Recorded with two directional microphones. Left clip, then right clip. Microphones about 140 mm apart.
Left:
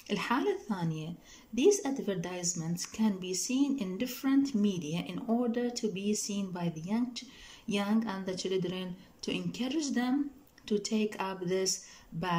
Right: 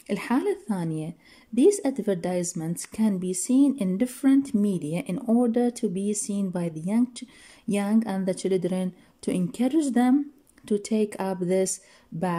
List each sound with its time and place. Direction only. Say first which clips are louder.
0.1 s a woman's voice: right 5 dB; 35° right (ahead or behind)